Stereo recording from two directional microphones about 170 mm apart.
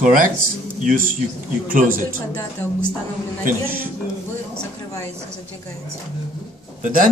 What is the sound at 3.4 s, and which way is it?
Speech, 55° right (ahead or behind).